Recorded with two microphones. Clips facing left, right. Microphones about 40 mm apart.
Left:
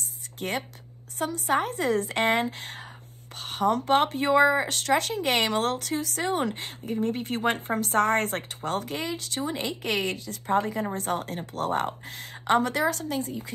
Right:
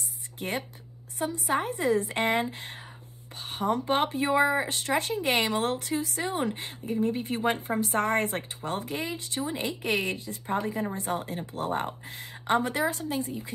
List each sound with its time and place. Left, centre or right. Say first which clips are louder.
0.4 s a woman's voice: left 2 dB; left
1.5 s a woman's voice: left 1 dB; left
4.6 s a woman's voice: left 3 dB; left
6.2 s a woman's voice: left 3 dB; left
10.5 s a woman's voice: left 4 dB; left